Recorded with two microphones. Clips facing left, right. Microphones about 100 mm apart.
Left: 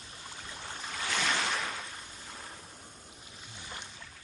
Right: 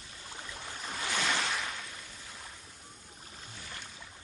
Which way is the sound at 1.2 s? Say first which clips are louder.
Left 2 dB; centre (ahead or behind).